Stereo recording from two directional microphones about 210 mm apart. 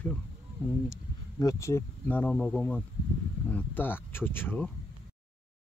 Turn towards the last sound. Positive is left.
turn(degrees=10)  # may be behind; listen again after turning